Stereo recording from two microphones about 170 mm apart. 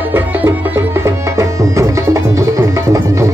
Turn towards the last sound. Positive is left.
turn(degrees=-15)  # may be behind; listen again after turning